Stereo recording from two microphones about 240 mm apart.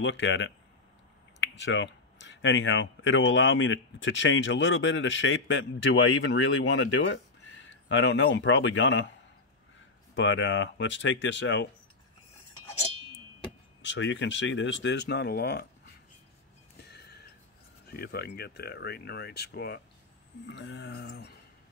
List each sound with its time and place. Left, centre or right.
0.0 s speech: left
10.1 s speech: left
13.8 s speech: left
17.9 s speech: left